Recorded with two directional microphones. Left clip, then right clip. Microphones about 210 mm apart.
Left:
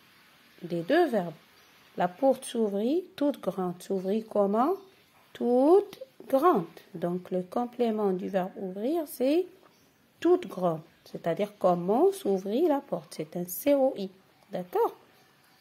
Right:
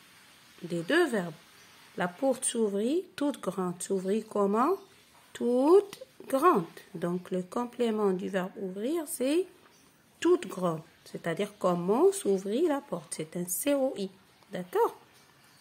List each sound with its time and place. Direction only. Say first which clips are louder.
0.7 s speech: left 2 dB; centre (ahead or behind)